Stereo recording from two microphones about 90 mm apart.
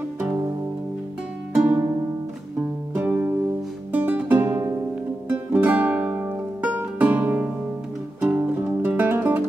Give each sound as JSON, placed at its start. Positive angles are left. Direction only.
{"t": 1.6, "sound": "music", "side_deg": -20}
{"t": 3.0, "sound": "music", "side_deg": -25}